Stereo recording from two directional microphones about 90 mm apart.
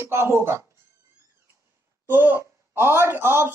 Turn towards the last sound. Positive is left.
turn(degrees=-25)  # may be behind; listen again after turning